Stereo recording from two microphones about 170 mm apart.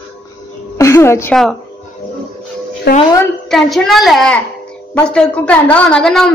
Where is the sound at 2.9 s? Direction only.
70° left (ahead or behind).